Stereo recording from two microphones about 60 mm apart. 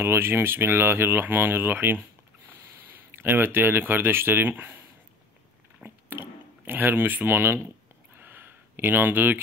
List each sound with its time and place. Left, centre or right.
0.0 s speech: right
5.9 s speech: right
8.2 s a sound: right